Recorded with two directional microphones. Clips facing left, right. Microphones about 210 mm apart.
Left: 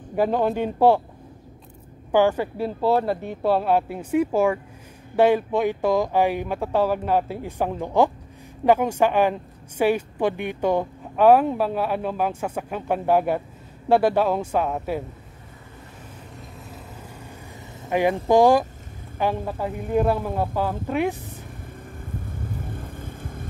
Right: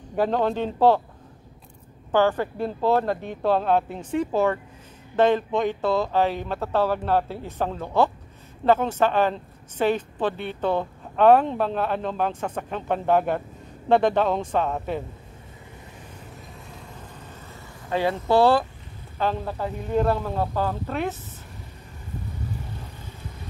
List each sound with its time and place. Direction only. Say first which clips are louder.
0.1 s speech: left 1 dB; 10° left (ahead or behind)
2.1 s speech: left 2 dB; 10° left (ahead or behind)
17.8 s speech: left 3 dB; 15° left (ahead or behind)
22.4 s vehicle: left 2 dB; 50° left (ahead or behind)